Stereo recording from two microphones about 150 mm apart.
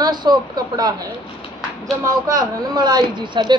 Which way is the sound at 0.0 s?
30° right (ahead or behind).